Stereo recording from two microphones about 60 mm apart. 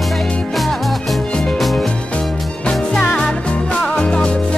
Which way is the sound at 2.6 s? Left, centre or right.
Centre.